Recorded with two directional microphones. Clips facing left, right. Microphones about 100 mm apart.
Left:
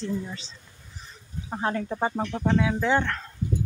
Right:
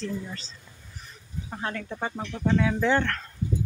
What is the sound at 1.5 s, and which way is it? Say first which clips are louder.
Speech: left 6 dB; 25° left (ahead or behind).